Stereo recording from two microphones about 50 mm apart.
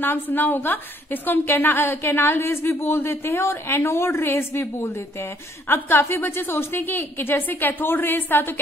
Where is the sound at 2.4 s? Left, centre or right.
Left.